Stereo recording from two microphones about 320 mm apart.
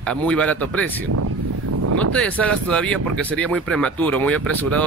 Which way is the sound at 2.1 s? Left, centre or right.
Centre.